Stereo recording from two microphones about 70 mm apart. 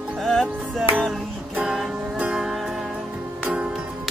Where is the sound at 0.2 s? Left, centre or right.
Centre.